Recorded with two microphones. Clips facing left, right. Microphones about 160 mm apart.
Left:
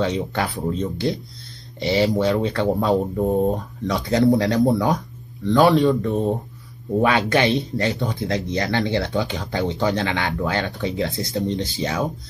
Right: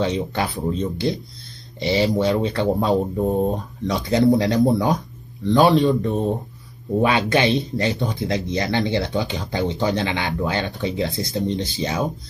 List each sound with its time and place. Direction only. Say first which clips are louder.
0.0 s speech: even; 20° right (ahead or behind)